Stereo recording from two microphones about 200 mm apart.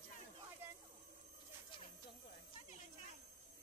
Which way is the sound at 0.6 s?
10° right (ahead or behind).